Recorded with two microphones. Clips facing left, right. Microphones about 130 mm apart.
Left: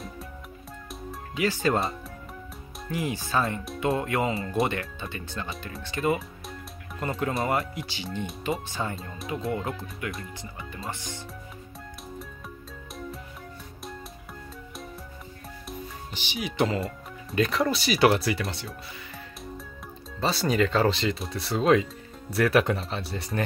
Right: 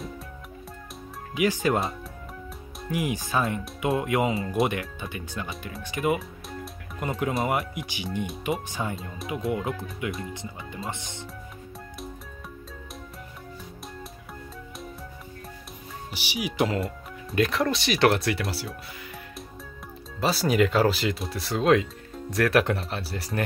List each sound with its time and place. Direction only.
1.3 s speech: 15° right (ahead or behind)
2.9 s speech: 15° right (ahead or behind)
8.9 s speech: 5° right (ahead or behind); by 11.1 s 20° right (ahead or behind)
16.1 s speech: 10° right (ahead or behind)
20.2 s speech: 5° right (ahead or behind)